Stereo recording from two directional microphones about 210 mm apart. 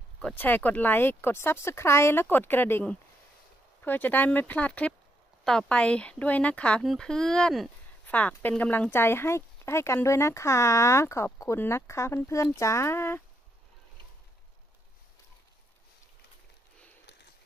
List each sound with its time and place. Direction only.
0.2 s speech: 10° left (ahead or behind)